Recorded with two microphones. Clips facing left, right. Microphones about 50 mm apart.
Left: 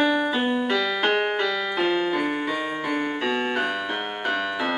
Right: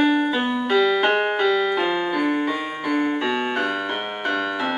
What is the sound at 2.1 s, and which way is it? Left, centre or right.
Music, centre.